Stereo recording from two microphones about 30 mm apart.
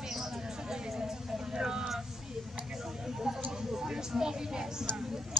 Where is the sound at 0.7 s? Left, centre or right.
Centre.